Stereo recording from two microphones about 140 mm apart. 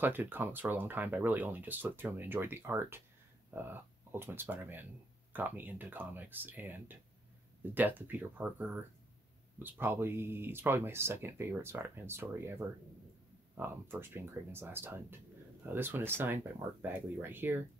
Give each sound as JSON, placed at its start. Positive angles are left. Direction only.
{"t": 0.0, "sound": "speech", "side_deg": -15}